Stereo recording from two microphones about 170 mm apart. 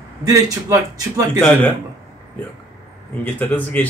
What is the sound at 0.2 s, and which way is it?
A man's voice, 20° right (ahead or behind).